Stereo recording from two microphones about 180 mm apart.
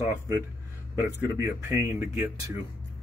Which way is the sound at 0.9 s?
15° right (ahead or behind).